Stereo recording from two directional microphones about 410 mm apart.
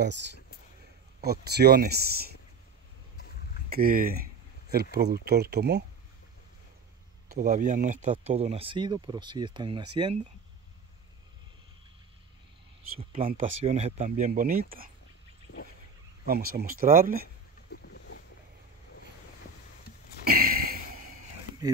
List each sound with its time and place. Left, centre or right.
1.2 s speech: right
3.7 s speech: right
7.2 s speech: centre
12.9 s speech: centre
16.3 s speech: right
17.6 s boat: left
20.2 s a sound: right